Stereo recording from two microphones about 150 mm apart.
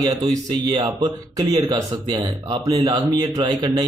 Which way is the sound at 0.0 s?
25° right (ahead or behind).